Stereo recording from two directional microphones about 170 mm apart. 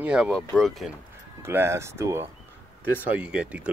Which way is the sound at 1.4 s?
15° right (ahead or behind).